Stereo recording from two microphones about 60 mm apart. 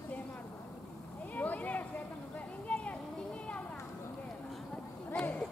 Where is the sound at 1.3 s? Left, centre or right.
Left.